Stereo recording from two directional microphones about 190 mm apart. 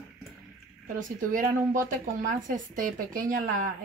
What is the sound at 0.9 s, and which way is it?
Speech, 45° right (ahead or behind).